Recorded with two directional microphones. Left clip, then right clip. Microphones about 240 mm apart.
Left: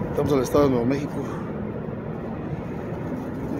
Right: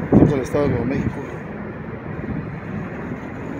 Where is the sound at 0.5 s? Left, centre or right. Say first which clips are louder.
Left 1 dB; centre.